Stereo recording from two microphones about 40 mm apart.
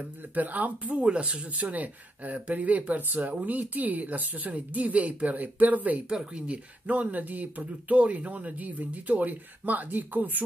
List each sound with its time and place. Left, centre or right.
0.3 s speech: right
1.0 s speech: right
1.5 s speech: right
6.0 s speech: right